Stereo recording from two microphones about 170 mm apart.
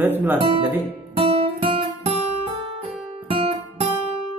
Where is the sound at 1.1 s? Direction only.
35° right (ahead or behind).